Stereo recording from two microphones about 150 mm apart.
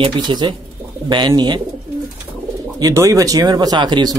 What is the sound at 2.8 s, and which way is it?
Speech, 20° right (ahead or behind).